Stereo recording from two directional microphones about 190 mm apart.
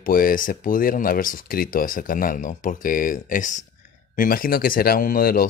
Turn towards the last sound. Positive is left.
turn(degrees=50)  # may be behind; listen again after turning